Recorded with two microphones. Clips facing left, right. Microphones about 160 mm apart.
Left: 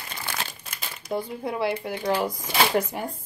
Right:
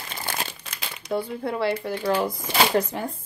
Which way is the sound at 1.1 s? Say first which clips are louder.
Right 2 dB; 15° left (ahead or behind).